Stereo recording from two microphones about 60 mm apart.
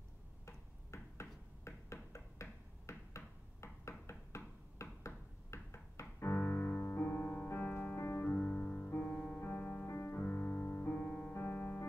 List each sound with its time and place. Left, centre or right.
0.5 s tick-tock: left
1.6 s a sound: left
3.6 s knock: left
6.8 s music: left
8.4 s music: left
9.8 s music: left